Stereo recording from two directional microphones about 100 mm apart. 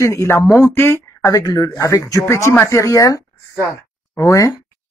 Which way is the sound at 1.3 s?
40° left (ahead or behind).